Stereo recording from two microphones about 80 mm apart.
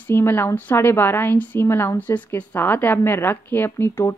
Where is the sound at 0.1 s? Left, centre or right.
Left.